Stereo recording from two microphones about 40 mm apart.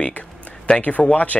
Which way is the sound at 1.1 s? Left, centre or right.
Left.